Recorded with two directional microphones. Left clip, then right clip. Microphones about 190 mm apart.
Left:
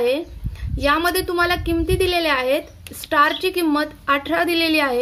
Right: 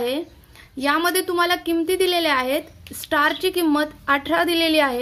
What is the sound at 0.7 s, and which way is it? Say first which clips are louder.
A woman's voice: left 2 dB; 20° right (ahead or behind).